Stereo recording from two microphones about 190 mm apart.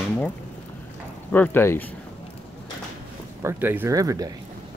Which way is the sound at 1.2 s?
10° left (ahead or behind).